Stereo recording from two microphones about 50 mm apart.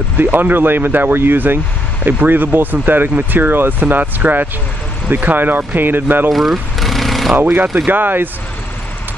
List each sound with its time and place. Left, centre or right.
0.2 s speech: right
6.3 s vehicle: centre
7.3 s speech: right